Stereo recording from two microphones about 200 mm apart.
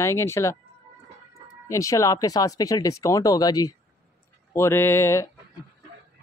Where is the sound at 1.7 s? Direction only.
15° left (ahead or behind).